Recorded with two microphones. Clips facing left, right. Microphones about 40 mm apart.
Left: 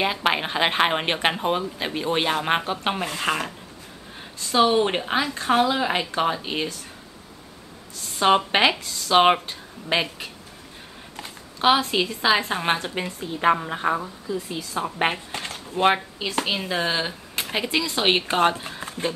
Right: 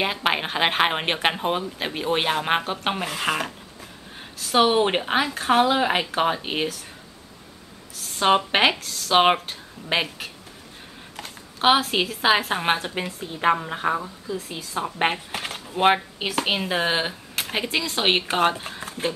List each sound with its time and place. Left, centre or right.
0.0 s speech: centre
4.5 s speech: right
8.1 s speech: centre
11.6 s speech: centre
15.3 s a sound: centre
16.2 s speech: right
16.5 s speech: centre
17.4 s speech: centre